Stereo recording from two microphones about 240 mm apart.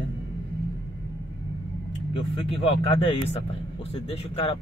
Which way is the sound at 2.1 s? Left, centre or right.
Left.